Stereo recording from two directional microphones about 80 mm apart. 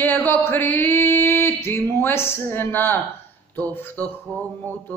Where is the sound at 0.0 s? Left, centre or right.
Left.